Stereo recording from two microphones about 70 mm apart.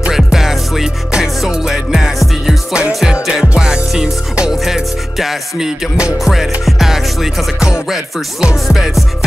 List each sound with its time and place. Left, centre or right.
0.1 s music: centre
7.9 s music: centre